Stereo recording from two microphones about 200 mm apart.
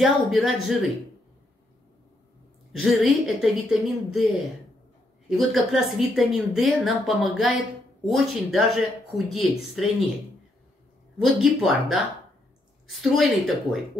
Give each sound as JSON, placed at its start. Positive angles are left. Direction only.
{"t": 0.0, "sound": "a woman's voice", "side_deg": 0}
{"t": 2.7, "sound": "a woman's voice", "side_deg": 0}
{"t": 11.2, "sound": "a woman's voice", "side_deg": 0}
{"t": 13.0, "sound": "a woman's voice", "side_deg": 0}